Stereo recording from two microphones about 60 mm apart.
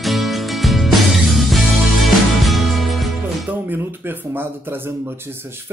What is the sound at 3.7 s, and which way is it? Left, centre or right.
Speech, right.